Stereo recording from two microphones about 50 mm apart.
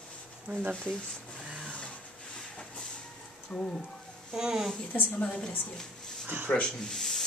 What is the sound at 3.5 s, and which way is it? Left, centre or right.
Speech, centre.